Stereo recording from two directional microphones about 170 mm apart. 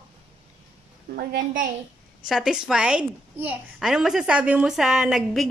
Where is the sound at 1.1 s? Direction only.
55° right (ahead or behind).